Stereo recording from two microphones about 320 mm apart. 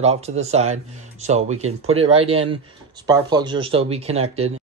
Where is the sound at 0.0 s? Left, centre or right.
Centre.